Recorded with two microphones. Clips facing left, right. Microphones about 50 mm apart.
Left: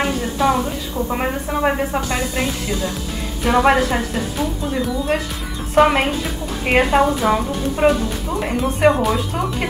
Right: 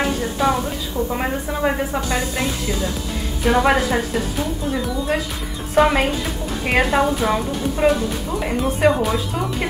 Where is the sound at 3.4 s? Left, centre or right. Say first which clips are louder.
Left 2 dB; centre.